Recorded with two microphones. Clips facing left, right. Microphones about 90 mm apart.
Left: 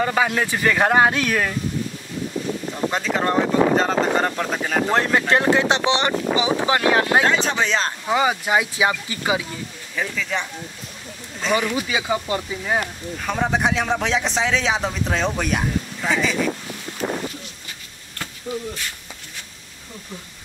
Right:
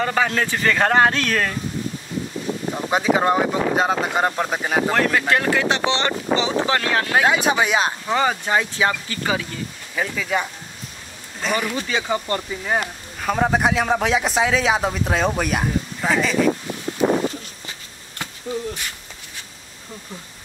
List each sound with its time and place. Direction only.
0.0 s speech: 10° left (ahead or behind)
2.7 s speech: 10° right (ahead or behind)
4.9 s speech: 25° left (ahead or behind)
7.2 s speech: 10° right (ahead or behind)
8.1 s speech: 10° left (ahead or behind)
9.9 s speech: 5° right (ahead or behind)
11.4 s speech: centre (ahead or behind)
11.7 s speech: 10° left (ahead or behind)
12.6 s speech: 5° right (ahead or behind)